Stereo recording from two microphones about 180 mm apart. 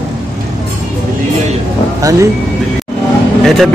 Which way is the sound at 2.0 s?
20° right (ahead or behind).